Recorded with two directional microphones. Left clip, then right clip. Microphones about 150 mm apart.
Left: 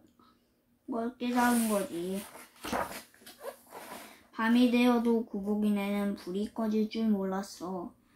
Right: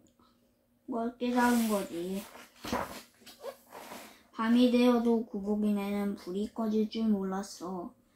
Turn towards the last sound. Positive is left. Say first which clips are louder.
# left 2 dB
turn(degrees=10)  # may be behind; listen again after turning